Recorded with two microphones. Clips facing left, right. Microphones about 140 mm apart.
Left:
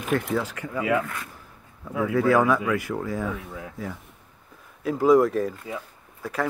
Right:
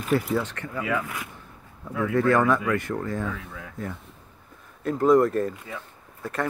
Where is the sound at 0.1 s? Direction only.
Centre (ahead or behind).